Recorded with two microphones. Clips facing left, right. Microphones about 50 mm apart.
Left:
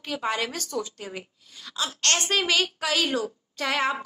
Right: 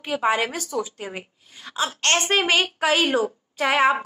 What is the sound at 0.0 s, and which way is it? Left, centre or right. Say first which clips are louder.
A woman's voice: right 6 dB; right.